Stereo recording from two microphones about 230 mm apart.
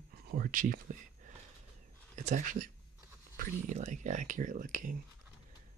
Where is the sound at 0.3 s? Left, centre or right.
Right.